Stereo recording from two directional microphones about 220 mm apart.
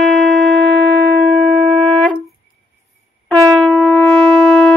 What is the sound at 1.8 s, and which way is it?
Music, centre (ahead or behind).